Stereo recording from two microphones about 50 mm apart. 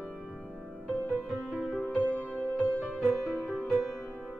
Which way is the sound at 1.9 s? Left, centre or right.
Left.